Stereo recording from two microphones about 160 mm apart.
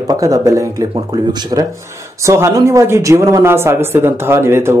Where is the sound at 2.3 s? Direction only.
15° right (ahead or behind).